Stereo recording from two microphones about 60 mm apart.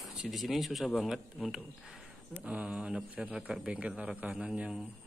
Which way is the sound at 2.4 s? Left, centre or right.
Right.